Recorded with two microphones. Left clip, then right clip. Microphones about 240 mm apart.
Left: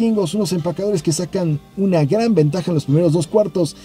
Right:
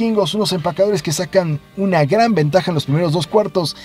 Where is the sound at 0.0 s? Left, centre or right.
Right.